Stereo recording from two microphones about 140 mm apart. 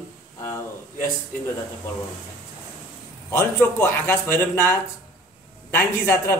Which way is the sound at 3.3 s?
15° left (ahead or behind).